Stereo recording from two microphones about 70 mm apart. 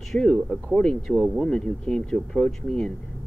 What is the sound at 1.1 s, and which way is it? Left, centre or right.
Speech, centre.